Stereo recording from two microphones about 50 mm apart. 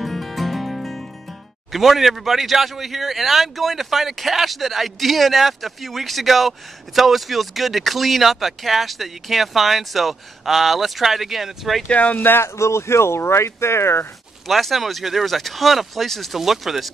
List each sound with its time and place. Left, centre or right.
0.0 s music: centre
1.7 s speech: centre
11.9 s speech: left
12.2 s speech: left
12.5 s speech: left
14.5 s speech: centre